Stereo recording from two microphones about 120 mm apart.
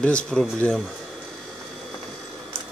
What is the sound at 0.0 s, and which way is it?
Speech, 10° left (ahead or behind).